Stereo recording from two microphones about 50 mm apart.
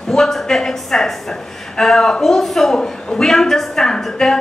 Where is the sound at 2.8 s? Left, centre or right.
Centre.